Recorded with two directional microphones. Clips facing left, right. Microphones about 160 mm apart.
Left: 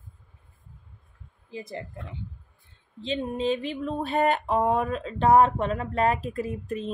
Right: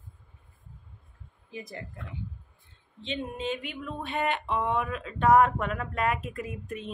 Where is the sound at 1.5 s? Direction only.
25° left (ahead or behind).